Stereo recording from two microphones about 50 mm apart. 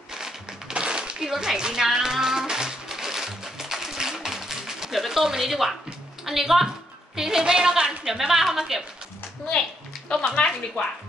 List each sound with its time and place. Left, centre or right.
0.1 s a sound: centre
6.2 s a woman's voice: centre
9.5 s a woman's voice: centre